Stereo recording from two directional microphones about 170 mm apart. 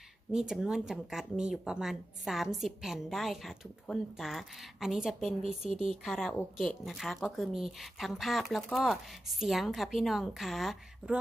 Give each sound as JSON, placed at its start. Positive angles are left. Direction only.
{"t": 0.3, "sound": "speech", "side_deg": -5}
{"t": 5.7, "sound": "speech", "side_deg": -35}
{"t": 6.0, "sound": "speech", "side_deg": 0}